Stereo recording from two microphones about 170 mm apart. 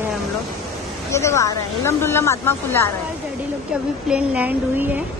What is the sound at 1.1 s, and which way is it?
Speech, 15° left (ahead or behind).